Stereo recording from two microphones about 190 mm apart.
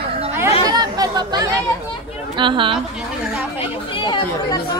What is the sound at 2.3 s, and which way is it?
Speech, 25° right (ahead or behind).